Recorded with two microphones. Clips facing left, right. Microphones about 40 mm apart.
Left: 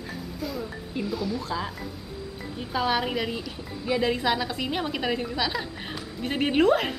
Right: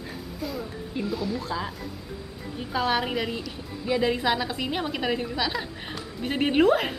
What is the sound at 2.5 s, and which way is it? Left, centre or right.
A woman's voice, centre.